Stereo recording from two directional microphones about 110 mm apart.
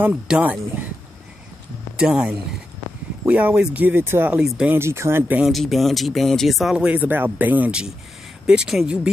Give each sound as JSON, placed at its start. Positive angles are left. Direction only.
{"t": 0.0, "sound": "speech", "side_deg": -10}
{"t": 2.0, "sound": "speech", "side_deg": -10}
{"t": 4.4, "sound": "speech", "side_deg": -5}
{"t": 4.7, "sound": "speech", "side_deg": -25}
{"t": 5.5, "sound": "speech", "side_deg": 0}